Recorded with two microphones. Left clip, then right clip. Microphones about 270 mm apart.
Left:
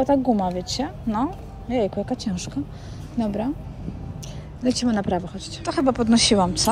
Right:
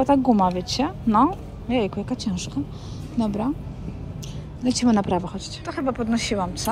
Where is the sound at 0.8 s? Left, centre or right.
Right.